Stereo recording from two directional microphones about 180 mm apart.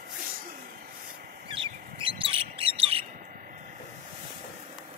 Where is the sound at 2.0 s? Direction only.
30° right (ahead or behind).